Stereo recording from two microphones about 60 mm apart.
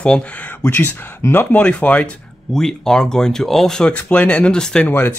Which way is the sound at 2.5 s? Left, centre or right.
Centre.